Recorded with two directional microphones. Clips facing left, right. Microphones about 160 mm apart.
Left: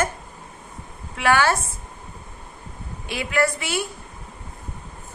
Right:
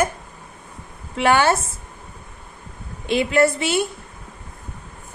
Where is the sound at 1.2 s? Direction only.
25° right (ahead or behind).